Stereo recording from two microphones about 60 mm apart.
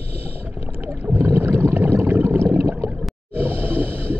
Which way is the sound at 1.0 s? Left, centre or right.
Right.